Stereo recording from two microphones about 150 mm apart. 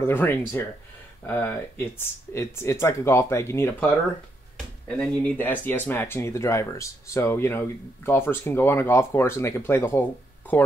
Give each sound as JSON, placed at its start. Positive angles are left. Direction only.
{"t": 0.0, "sound": "speech", "side_deg": 15}
{"t": 4.8, "sound": "speech", "side_deg": 5}